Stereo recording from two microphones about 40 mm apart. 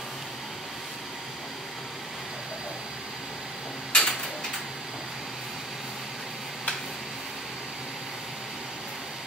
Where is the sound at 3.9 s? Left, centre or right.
Left.